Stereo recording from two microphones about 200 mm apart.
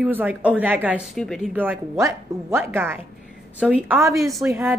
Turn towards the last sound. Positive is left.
turn(degrees=0)  # may be behind; listen again after turning